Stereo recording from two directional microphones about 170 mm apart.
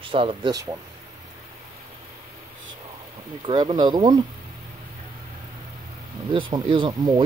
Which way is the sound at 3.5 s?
25° right (ahead or behind).